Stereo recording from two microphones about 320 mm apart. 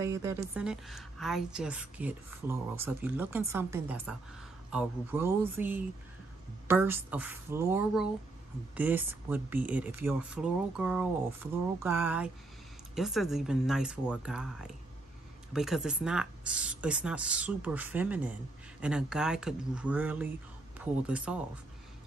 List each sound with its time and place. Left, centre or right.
0.0 s a woman's voice: centre